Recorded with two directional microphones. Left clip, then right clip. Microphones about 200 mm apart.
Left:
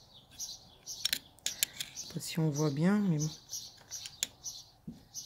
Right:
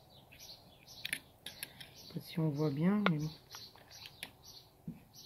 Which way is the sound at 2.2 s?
30° left (ahead or behind).